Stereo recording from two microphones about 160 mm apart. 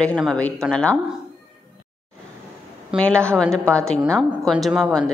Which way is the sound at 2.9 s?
5° left (ahead or behind).